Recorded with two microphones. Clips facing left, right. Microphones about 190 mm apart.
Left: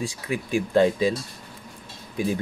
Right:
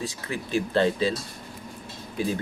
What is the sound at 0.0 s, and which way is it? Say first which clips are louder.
Speech: left 3 dB; 10° left (ahead or behind).